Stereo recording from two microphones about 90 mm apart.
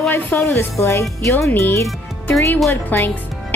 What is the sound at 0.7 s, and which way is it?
Speech, 30° left (ahead or behind).